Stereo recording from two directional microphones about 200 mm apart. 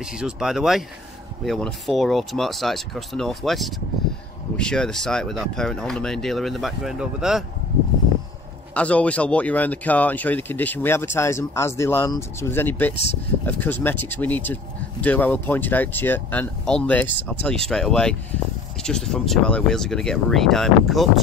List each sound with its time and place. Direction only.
0.0 s speech: 5° right (ahead or behind)
8.7 s speech: 5° left (ahead or behind)